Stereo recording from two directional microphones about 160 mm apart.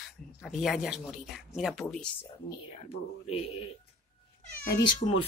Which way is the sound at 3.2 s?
40° left (ahead or behind).